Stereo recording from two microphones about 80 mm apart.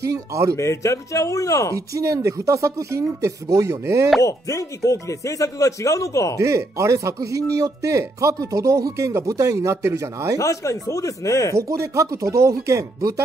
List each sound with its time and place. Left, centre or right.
0.0 s speech: right
0.6 s speech: left
2.0 s speech: right
4.2 s speech: left
6.3 s speech: right
10.4 s speech: left
11.5 s speech: right